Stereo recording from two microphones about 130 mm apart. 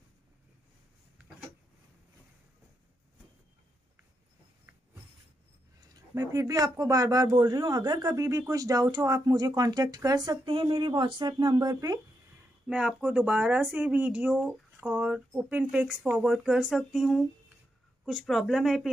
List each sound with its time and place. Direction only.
6.1 s a man's voice: 25° right (ahead or behind)
12.6 s speech: 5° right (ahead or behind)